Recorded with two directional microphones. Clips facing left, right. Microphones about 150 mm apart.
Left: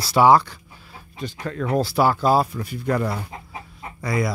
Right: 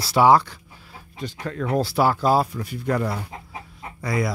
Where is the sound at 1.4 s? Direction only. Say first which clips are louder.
Left 1 dB; 50° left (ahead or behind).